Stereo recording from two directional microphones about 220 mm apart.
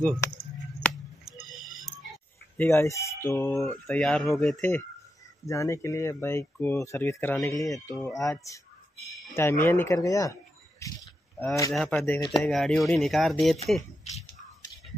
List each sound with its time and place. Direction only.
0.7 s scissors: 5° left (ahead or behind)
1.6 s music: centre (ahead or behind)
2.5 s speech: 10° left (ahead or behind)
10.8 s a sound: 10° left (ahead or behind)
11.7 s speech: centre (ahead or behind)
12.2 s speech: 20° left (ahead or behind)
12.4 s speech: centre (ahead or behind)